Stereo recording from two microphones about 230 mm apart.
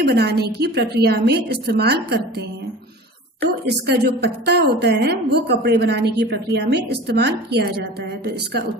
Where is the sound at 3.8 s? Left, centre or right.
Right.